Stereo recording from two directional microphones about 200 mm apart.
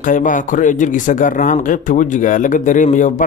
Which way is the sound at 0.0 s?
40° left (ahead or behind).